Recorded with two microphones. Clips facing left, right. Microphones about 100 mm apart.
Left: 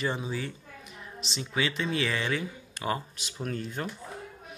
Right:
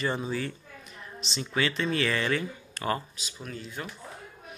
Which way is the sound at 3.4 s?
50° left (ahead or behind).